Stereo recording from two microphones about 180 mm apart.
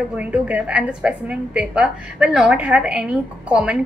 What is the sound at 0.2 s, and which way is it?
A woman's voice, 10° right (ahead or behind).